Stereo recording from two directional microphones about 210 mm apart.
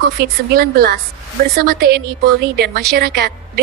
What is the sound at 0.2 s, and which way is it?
Speech, 45° right (ahead or behind).